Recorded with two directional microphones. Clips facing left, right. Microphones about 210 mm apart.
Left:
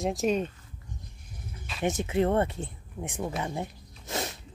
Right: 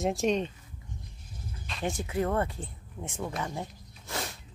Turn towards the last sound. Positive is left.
turn(degrees=20)  # may be behind; listen again after turning